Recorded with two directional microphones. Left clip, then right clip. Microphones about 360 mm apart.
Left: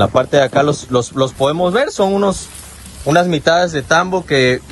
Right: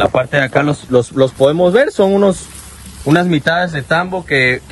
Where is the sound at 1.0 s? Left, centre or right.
Centre.